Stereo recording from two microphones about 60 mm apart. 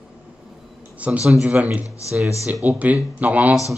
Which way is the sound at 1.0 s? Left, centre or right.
Right.